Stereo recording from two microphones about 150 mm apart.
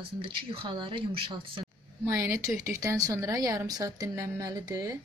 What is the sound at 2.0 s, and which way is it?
Speech, 20° right (ahead or behind).